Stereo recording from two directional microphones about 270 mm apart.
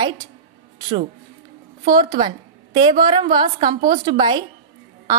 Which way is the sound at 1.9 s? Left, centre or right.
Centre.